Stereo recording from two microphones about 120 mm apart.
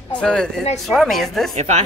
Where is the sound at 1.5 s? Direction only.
70° right (ahead or behind).